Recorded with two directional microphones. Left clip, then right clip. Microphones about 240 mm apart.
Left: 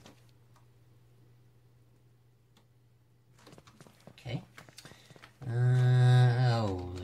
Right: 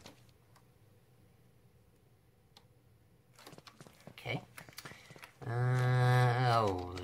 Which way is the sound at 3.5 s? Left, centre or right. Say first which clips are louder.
Right 1 dB; centre.